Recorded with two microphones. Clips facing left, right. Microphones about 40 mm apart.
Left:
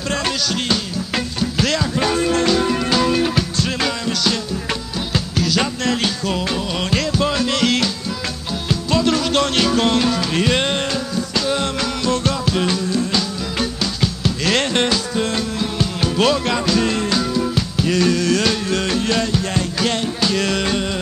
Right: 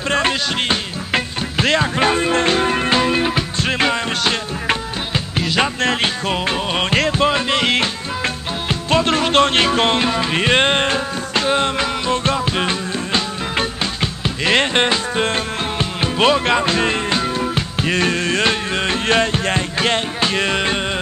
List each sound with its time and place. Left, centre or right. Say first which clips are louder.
0.1 s music: right 3 dB; right